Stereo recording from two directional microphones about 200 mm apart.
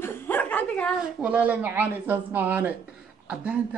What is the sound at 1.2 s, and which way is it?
A man's voice, 5° right (ahead or behind).